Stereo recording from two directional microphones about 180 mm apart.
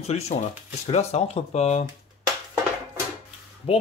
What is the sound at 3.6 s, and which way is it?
Speech, 35° left (ahead or behind).